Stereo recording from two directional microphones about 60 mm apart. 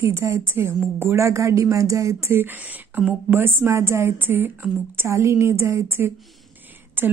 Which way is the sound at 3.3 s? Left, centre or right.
Right.